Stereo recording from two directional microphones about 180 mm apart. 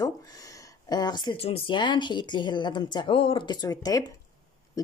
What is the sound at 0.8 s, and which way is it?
A woman's voice, 25° left (ahead or behind).